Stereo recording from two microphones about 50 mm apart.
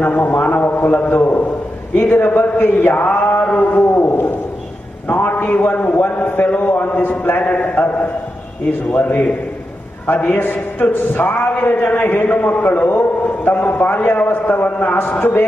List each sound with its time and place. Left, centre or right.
0.0 s a man's voice: left